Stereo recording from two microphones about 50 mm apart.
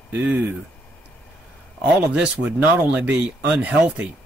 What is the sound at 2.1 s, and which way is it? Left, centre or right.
Speech, right.